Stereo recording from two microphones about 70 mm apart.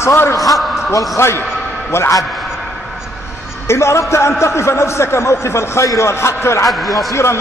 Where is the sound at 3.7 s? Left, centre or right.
Left.